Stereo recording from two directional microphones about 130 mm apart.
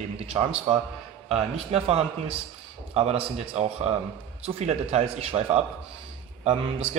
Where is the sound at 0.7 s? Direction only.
40° right (ahead or behind).